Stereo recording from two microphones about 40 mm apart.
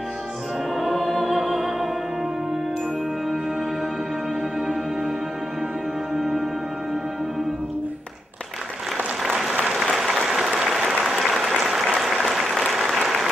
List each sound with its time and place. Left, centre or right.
0.7 s music: centre
9.8 s applause: centre